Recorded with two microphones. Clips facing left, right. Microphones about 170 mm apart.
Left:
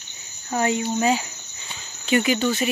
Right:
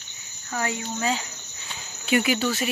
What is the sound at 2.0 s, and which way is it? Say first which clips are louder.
Speech: left 2 dB; 5° right (ahead or behind).